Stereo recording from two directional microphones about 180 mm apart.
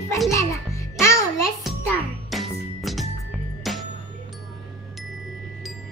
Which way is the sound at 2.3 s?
Centre (ahead or behind).